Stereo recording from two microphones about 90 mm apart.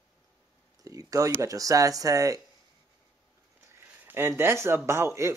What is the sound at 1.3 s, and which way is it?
Speech, 40° right (ahead or behind).